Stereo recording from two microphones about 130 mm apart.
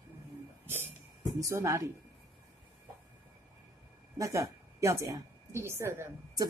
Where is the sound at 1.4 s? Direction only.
25° right (ahead or behind).